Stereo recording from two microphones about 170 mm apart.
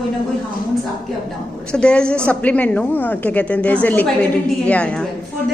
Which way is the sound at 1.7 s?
5° left (ahead or behind).